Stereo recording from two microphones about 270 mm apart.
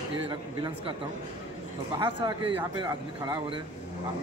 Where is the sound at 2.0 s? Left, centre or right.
Centre.